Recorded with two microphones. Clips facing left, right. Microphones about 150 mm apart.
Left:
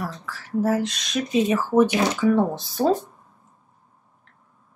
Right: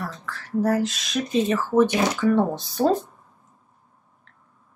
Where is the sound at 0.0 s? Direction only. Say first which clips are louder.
Left 1 dB; 5° left (ahead or behind).